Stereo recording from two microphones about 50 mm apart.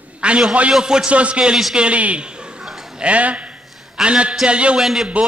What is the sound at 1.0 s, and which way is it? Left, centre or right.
A man's voice, right.